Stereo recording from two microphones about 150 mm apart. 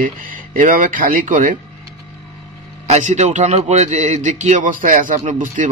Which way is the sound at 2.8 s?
50° right (ahead or behind).